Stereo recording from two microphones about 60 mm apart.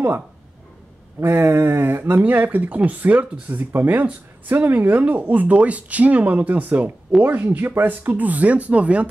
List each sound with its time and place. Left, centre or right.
1.2 s speech: right